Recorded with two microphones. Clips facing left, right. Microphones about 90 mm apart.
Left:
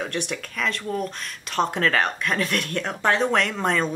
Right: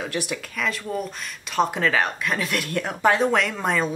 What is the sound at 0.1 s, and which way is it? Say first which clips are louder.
Speech: right 1 dB; 5° right (ahead or behind).